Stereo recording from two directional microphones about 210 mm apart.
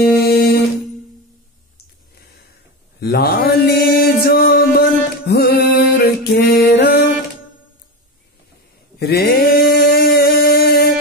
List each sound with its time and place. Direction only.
0.0 s music: 50° left (ahead or behind)
3.0 s mantra: 50° left (ahead or behind)
5.9 s music: 50° left (ahead or behind)
9.0 s a sound: 50° left (ahead or behind)